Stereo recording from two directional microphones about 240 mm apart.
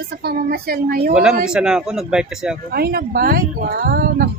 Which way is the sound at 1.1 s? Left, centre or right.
Centre.